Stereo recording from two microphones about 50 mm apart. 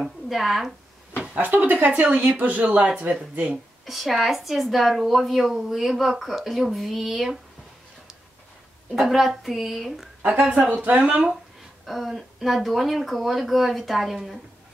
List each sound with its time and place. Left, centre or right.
0.3 s a woman's voice: centre
1.4 s speech: right
2.0 s speech: right
3.8 s a woman's voice: centre
8.9 s a woman's voice: centre
10.5 s speech: right
11.8 s a woman's voice: centre